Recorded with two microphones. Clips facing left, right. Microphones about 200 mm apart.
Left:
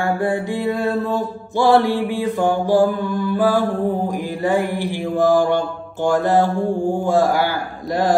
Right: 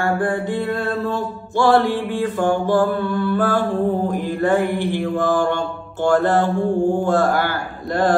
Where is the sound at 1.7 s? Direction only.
50° right (ahead or behind).